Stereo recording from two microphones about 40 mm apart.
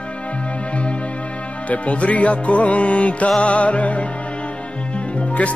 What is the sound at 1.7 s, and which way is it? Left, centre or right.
Music, left.